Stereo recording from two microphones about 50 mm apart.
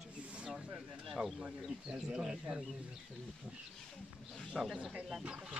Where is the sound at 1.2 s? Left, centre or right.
Right.